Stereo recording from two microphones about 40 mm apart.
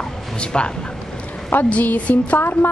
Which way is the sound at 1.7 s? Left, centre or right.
Left.